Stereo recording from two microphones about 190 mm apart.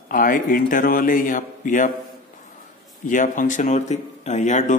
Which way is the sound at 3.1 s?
45° left (ahead or behind).